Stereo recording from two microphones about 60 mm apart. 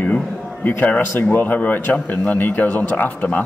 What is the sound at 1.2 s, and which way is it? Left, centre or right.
A man's voice, left.